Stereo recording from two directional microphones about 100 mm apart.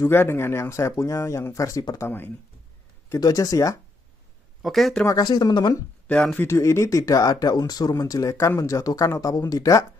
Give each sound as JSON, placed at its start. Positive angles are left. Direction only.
{"t": 0.0, "sound": "speech", "side_deg": 25}
{"t": 2.0, "sound": "speech", "side_deg": 20}
{"t": 3.2, "sound": "speech", "side_deg": 40}
{"t": 4.6, "sound": "speech", "side_deg": 0}
{"t": 5.0, "sound": "speech", "side_deg": 40}
{"t": 6.0, "sound": "speech", "side_deg": 10}
{"t": 6.4, "sound": "speech", "side_deg": 30}